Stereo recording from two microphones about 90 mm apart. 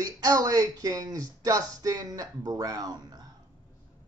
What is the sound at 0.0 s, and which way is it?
Speech, 45° right (ahead or behind).